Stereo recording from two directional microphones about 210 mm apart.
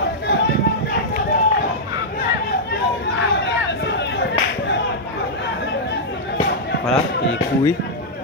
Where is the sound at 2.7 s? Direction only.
55° left (ahead or behind).